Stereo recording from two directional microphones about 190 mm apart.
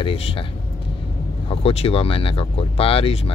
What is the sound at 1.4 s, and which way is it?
Speech, 30° left (ahead or behind).